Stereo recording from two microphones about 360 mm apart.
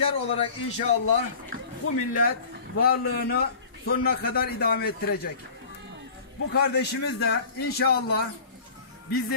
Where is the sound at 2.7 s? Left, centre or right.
Left.